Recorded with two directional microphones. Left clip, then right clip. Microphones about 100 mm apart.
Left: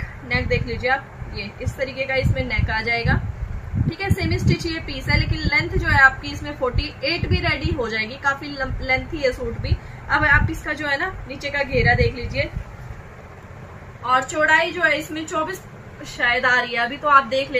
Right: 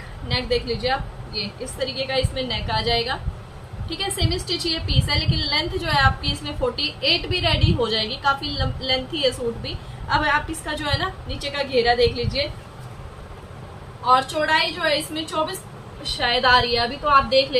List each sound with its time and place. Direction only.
0.3 s a woman's voice: 15° right (ahead or behind)
14.0 s a woman's voice: 20° right (ahead or behind)
14.8 s a woman's voice: 30° right (ahead or behind)